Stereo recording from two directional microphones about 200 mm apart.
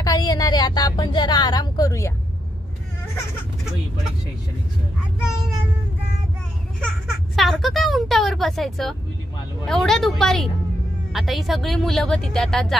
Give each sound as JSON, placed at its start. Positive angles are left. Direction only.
{"t": 0.0, "sound": "a woman's voice", "side_deg": 20}
{"t": 7.3, "sound": "speech", "side_deg": 0}